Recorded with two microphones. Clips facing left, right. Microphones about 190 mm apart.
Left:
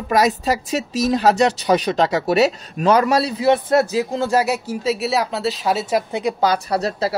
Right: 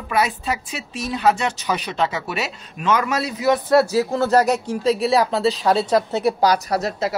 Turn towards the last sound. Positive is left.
turn(degrees=30)  # may be behind; listen again after turning